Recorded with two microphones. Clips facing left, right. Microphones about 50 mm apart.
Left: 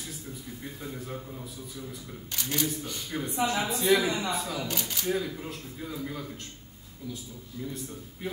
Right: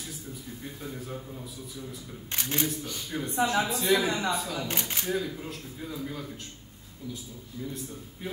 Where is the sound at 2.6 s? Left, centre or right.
Centre.